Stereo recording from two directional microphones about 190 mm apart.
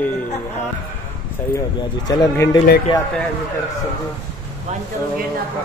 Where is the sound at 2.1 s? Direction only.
20° left (ahead or behind).